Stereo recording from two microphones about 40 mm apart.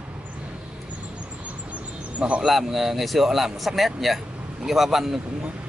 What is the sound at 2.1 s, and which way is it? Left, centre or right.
Speech, right.